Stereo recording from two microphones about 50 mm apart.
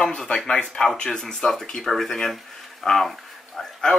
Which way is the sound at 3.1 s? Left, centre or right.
Centre.